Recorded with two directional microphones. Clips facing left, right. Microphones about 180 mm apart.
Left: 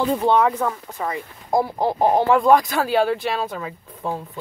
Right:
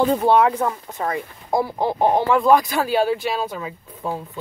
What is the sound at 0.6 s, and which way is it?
Speech, 15° right (ahead or behind).